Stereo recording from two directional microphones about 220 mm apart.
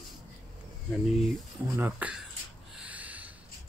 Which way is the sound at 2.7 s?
5° right (ahead or behind).